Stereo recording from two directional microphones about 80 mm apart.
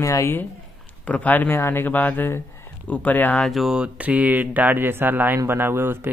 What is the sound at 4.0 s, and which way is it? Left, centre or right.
Speech, centre.